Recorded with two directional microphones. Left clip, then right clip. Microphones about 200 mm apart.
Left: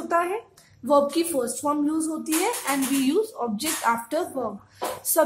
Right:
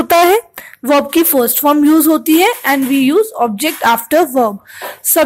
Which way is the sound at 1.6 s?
40° right (ahead or behind).